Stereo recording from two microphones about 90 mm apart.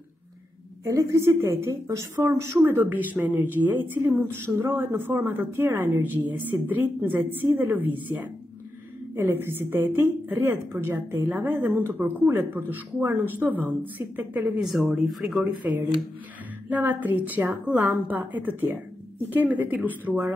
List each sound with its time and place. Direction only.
0.8 s a woman's voice: 35° right (ahead or behind); by 14.5 s 20° right (ahead or behind)
14.6 s speech: 5° right (ahead or behind)
15.7 s speech: 25° right (ahead or behind)